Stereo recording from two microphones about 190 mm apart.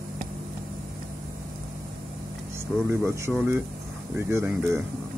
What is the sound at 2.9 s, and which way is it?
Speech, 15° right (ahead or behind).